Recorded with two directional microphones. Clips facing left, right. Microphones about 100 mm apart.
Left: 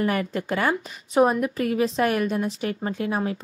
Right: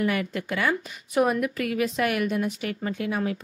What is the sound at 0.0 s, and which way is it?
A woman's voice, 35° left (ahead or behind).